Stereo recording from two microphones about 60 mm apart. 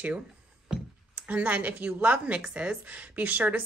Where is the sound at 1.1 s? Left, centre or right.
Right.